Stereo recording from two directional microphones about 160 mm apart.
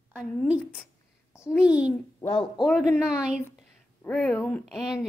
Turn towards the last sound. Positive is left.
turn(degrees=0)  # may be behind; listen again after turning